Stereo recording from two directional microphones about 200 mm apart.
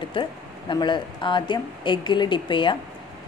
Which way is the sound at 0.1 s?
25° left (ahead or behind).